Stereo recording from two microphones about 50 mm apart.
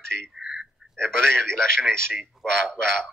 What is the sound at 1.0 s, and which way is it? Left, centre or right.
Speech, centre.